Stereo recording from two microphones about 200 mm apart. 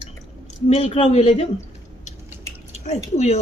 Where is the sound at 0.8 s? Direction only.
30° left (ahead or behind).